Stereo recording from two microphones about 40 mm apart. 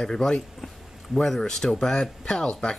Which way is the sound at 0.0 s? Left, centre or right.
Centre.